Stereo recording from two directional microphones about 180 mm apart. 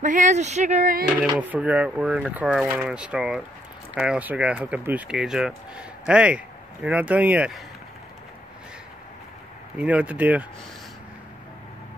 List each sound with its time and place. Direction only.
0.0 s speech: 45° right (ahead or behind)
1.3 s speech: 10° right (ahead or behind)
9.8 s speech: 10° right (ahead or behind)